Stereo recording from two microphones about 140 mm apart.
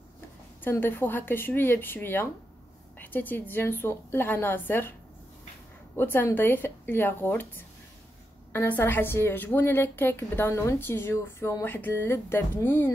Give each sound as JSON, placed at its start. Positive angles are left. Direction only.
{"t": 0.7, "sound": "a woman's voice", "side_deg": 15}
{"t": 5.9, "sound": "a woman's voice", "side_deg": 15}